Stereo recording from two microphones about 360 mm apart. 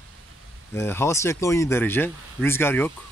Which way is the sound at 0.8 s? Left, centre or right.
Centre.